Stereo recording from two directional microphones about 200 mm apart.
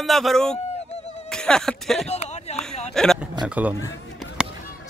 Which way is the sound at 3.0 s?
Centre (ahead or behind).